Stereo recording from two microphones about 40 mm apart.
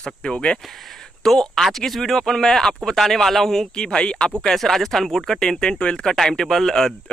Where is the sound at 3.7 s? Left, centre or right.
Left.